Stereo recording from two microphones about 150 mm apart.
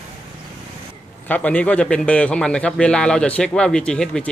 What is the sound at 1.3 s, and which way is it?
A man's voice, 10° left (ahead or behind).